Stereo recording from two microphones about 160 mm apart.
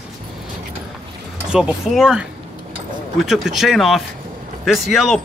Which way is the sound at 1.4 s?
5° right (ahead or behind).